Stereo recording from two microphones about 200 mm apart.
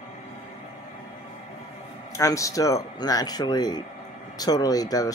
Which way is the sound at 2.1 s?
15° left (ahead or behind).